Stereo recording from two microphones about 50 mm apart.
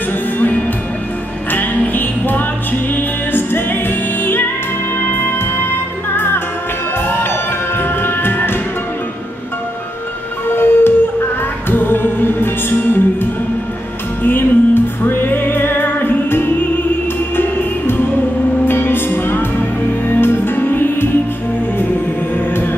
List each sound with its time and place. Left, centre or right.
1.5 s music: left
10.5 s music: left